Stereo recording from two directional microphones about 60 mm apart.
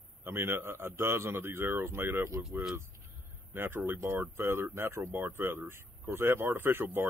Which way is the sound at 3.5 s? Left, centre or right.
Right.